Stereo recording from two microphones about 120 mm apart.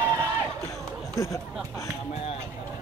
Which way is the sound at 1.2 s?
25° left (ahead or behind).